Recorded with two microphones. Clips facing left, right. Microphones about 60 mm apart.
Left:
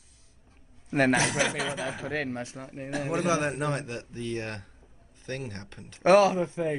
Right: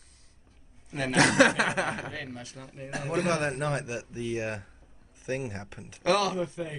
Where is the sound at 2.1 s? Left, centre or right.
Left.